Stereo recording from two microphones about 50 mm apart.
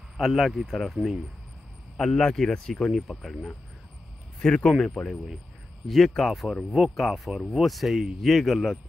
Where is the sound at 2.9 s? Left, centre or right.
Centre.